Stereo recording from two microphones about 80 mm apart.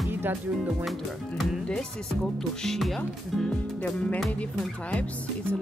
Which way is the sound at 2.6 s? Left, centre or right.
Centre.